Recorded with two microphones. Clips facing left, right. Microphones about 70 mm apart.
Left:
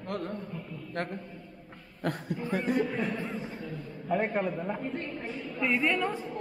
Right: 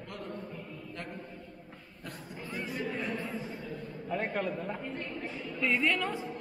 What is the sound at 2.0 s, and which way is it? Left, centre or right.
Speech, left.